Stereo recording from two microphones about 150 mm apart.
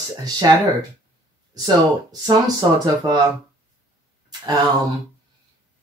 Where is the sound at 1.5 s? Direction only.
25° right (ahead or behind).